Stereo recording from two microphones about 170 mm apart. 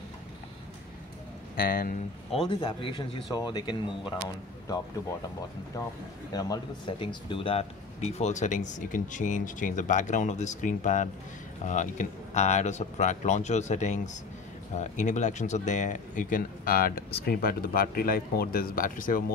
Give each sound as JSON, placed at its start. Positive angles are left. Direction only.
{"t": 1.6, "sound": "speech", "side_deg": 55}
{"t": 2.3, "sound": "a man's voice", "side_deg": 30}
{"t": 5.7, "sound": "a man's voice", "side_deg": 20}